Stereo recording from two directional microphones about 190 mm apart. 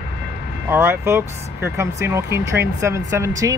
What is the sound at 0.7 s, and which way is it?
Speech, 10° right (ahead or behind).